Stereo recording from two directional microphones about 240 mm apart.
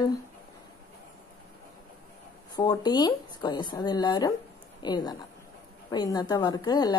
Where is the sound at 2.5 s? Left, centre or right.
Centre.